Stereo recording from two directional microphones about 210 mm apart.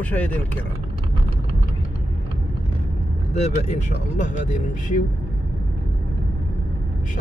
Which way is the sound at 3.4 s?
35° left (ahead or behind).